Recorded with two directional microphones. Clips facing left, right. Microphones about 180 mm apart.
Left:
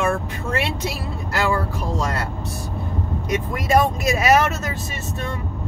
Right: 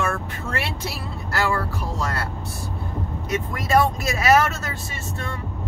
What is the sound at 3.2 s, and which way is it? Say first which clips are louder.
Speech: left 3 dB; 15° left (ahead or behind).